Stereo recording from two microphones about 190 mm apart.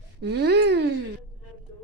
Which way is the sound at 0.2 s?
60° right (ahead or behind).